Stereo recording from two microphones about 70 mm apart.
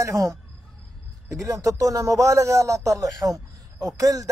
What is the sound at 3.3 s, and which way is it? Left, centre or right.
Speech, right.